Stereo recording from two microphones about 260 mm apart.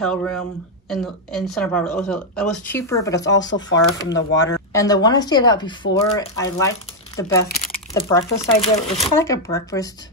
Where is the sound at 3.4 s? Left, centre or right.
Left.